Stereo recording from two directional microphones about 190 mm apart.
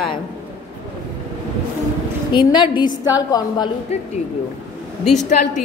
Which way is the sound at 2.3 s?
25° left (ahead or behind).